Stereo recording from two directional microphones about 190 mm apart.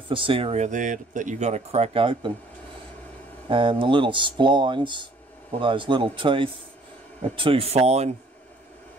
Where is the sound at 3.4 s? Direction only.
25° right (ahead or behind).